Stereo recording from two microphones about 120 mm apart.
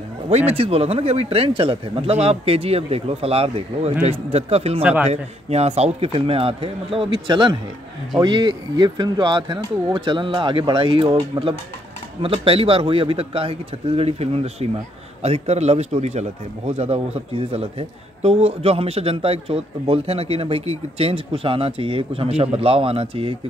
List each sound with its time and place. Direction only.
0.5 s a man's voice: 55° right (ahead or behind)